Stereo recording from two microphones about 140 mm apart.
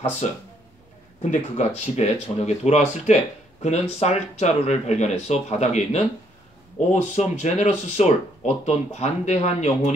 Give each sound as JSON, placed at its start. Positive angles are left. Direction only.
{"t": 1.3, "sound": "speech", "side_deg": 50}